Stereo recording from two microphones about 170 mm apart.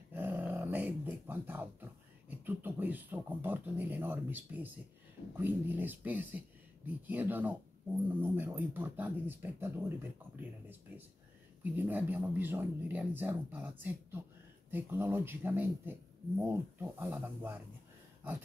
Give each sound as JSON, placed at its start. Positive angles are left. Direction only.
{"t": 0.1, "sound": "speech", "side_deg": -10}